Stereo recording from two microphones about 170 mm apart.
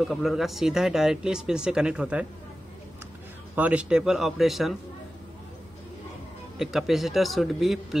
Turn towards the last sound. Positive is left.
turn(degrees=0)  # may be behind; listen again after turning